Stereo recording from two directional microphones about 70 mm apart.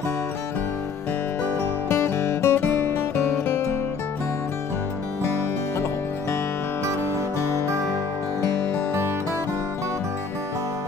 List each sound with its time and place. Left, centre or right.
1.6 s music: left